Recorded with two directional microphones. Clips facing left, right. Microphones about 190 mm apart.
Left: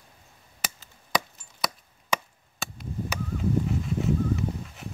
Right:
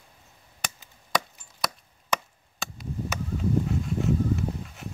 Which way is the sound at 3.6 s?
Centre (ahead or behind).